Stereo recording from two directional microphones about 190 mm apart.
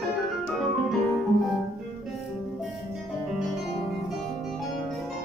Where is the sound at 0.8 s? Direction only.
Centre (ahead or behind).